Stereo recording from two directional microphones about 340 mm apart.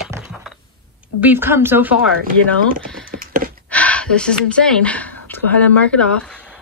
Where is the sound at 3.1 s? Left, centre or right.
Right.